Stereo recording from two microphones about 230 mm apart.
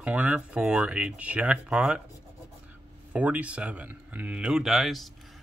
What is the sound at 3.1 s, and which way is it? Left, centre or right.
Speech, centre.